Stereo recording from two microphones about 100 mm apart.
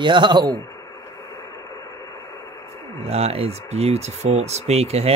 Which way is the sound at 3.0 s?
90° right.